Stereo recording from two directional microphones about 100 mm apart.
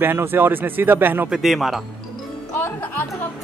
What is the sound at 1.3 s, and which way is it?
Music, 5° right (ahead or behind).